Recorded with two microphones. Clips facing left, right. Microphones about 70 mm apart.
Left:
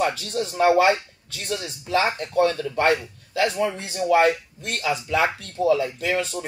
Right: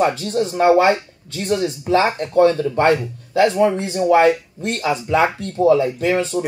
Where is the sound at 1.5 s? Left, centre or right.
Right.